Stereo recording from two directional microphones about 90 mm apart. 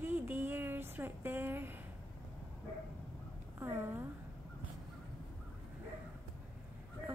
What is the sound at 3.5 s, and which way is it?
Speech, 25° right (ahead or behind).